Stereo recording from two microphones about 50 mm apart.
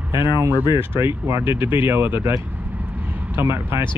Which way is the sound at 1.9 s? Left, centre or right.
Right.